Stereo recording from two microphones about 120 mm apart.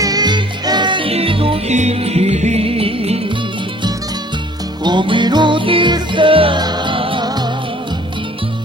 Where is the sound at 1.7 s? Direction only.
70° right (ahead or behind).